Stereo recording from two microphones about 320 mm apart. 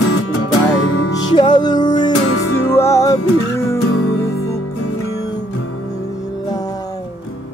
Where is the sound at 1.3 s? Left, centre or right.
Centre.